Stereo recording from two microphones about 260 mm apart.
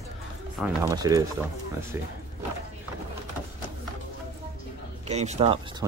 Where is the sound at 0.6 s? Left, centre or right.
Centre.